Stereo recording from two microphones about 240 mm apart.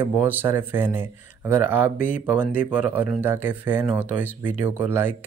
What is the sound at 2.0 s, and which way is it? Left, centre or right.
Speech, left.